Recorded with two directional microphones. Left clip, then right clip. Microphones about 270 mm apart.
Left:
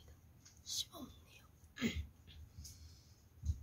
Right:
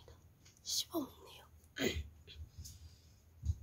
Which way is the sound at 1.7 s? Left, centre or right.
Right.